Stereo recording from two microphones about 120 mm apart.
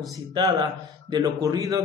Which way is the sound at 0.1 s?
30° right (ahead or behind).